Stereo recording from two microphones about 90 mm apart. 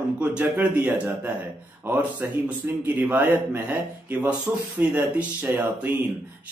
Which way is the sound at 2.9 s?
20° right (ahead or behind).